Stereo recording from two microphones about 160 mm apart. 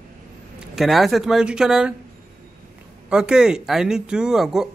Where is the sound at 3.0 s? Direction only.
5° right (ahead or behind).